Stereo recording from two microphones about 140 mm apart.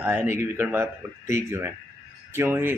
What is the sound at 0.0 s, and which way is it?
A man's voice, 15° right (ahead or behind).